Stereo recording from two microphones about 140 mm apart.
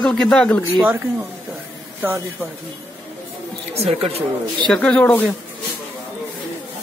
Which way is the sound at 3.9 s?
45° right (ahead or behind).